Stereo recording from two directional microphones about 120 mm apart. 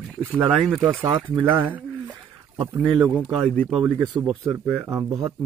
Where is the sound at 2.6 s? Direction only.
40° right (ahead or behind).